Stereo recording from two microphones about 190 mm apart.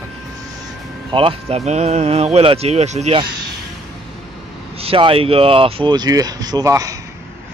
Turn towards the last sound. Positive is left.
turn(degrees=-20)  # may be behind; listen again after turning